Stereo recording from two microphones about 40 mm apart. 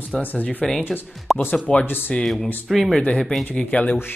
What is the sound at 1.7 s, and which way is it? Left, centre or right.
Speech, left.